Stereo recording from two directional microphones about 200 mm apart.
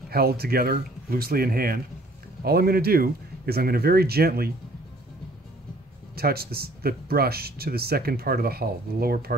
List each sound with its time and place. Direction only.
0.1 s speech: 50° right (ahead or behind)
6.1 s speech: 50° right (ahead or behind)